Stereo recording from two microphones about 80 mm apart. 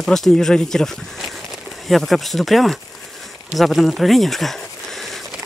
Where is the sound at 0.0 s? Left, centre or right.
Centre.